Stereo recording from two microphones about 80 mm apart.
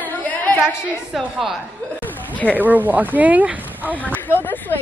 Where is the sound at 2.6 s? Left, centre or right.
Right.